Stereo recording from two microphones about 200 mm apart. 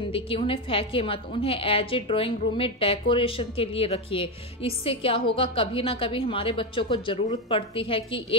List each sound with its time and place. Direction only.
0.1 s a woman's voice: 25° left (ahead or behind)